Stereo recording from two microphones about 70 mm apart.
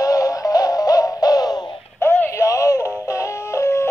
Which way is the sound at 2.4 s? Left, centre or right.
Left.